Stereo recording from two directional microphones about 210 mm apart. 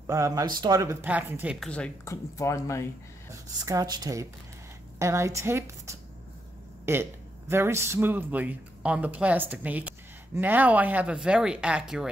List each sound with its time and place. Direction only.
0.0 s speech: 15° right (ahead or behind)
1.7 s speech: 10° left (ahead or behind)
3.6 s speech: 15° right (ahead or behind)